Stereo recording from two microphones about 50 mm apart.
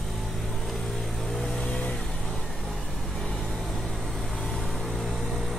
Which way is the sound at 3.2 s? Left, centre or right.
Centre.